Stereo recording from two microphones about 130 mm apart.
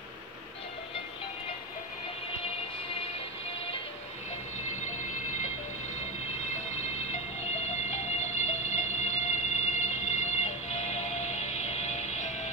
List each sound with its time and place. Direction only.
7.1 s music: 60° left (ahead or behind)